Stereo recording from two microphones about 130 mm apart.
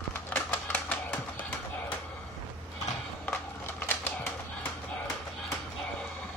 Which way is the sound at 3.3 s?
15° left (ahead or behind).